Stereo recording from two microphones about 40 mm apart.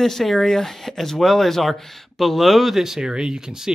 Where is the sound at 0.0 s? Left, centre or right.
Centre.